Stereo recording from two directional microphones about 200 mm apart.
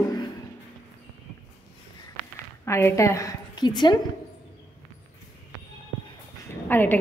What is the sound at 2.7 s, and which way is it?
A woman's voice, 15° left (ahead or behind).